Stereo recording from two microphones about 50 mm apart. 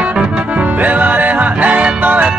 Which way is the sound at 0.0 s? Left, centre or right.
Right.